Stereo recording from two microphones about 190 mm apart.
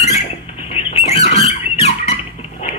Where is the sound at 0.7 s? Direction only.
35° left (ahead or behind).